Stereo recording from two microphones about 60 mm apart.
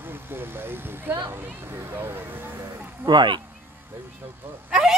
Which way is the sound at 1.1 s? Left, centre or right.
Right.